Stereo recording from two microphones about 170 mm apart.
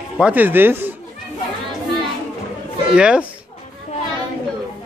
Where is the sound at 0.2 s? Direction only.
10° right (ahead or behind).